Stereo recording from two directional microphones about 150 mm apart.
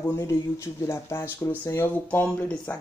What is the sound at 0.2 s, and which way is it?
Speech, 20° left (ahead or behind).